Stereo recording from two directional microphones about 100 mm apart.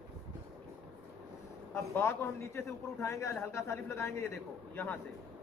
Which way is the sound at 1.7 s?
25° left (ahead or behind).